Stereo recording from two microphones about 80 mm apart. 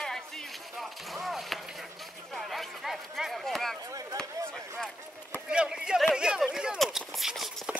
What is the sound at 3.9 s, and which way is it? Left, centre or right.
Chop, right.